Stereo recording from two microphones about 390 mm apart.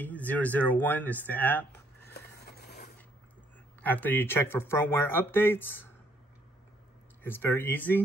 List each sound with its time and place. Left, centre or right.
0.0 s speech: centre
2.1 s vehicle: left
3.8 s speech: centre
7.2 s speech: centre